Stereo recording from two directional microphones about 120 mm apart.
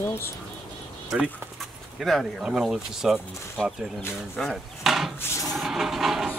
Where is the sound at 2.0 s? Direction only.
Centre (ahead or behind).